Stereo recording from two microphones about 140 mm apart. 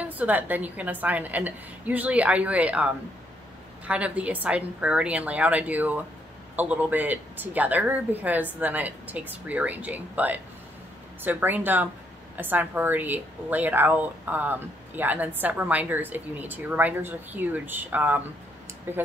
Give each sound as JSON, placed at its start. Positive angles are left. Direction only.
{"t": 0.0, "sound": "speech", "side_deg": -10}